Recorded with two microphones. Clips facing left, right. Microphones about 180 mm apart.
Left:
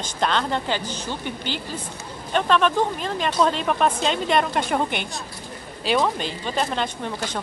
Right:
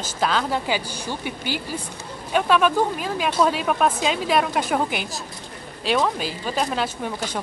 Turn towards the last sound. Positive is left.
turn(degrees=-5)  # may be behind; listen again after turning